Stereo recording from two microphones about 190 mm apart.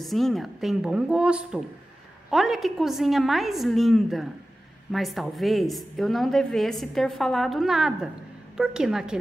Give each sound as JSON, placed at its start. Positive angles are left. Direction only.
{"t": 0.0, "sound": "a woman's voice", "side_deg": 0}